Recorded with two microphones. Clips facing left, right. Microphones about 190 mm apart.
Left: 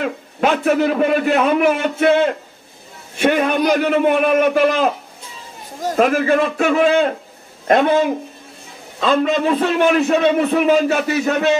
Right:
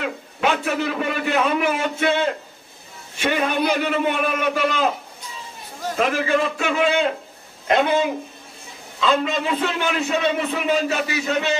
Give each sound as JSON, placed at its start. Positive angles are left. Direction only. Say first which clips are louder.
{"t": 0.0, "sound": "a man's voice", "louder": "left 4 dB", "side_deg": 45}
{"t": 3.2, "sound": "a man's voice", "louder": "left 5 dB", "side_deg": 50}